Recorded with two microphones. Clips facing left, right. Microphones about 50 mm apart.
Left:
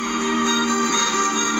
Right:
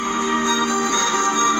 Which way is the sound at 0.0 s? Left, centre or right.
Right.